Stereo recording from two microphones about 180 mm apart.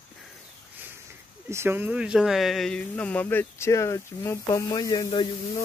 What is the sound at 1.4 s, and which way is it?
Speech, 15° right (ahead or behind).